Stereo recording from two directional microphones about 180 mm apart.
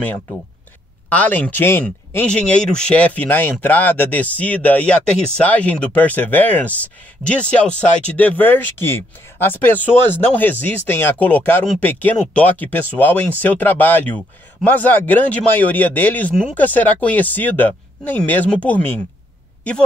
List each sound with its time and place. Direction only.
0.0 s speech: 10° left (ahead or behind)